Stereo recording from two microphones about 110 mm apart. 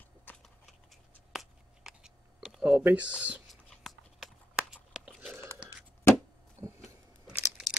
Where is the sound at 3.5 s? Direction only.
Centre (ahead or behind).